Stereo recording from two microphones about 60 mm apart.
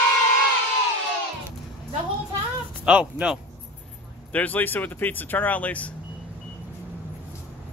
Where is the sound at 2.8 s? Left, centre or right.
Centre.